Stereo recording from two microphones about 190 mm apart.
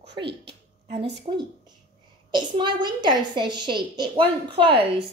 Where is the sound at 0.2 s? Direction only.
60° right (ahead or behind).